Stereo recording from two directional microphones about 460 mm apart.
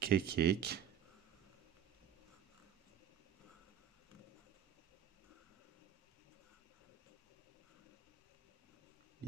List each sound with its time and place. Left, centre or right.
0.0 s speech: centre